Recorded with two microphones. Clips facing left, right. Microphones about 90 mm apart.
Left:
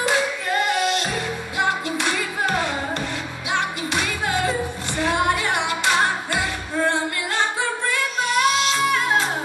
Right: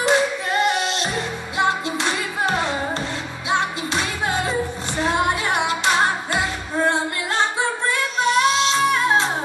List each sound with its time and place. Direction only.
0.0 s singing: 20° right (ahead or behind)
1.6 s music: 20° right (ahead or behind)
7.9 s child singing: 25° right (ahead or behind)